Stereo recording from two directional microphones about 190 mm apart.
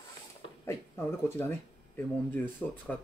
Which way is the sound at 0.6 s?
15° left (ahead or behind).